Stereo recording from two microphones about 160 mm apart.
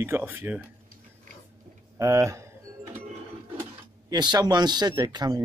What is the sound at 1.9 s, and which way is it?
Speech, 20° right (ahead or behind).